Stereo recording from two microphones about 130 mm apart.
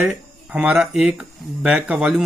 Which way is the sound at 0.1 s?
5° right (ahead or behind).